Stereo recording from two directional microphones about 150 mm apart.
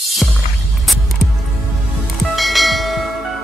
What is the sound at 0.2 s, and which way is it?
Music, centre (ahead or behind).